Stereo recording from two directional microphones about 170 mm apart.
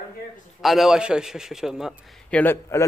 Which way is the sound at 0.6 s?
Centre (ahead or behind).